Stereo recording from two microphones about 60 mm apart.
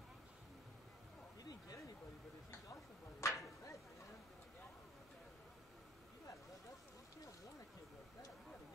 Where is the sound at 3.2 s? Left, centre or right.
Left.